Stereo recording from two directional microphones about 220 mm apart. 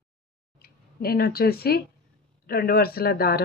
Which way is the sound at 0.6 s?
45° left (ahead or behind).